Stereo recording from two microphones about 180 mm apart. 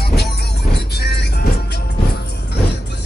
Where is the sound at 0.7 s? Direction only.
65° left (ahead or behind).